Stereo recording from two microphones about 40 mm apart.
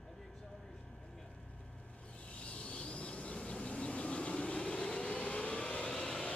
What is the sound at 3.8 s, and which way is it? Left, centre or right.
Vehicle, left.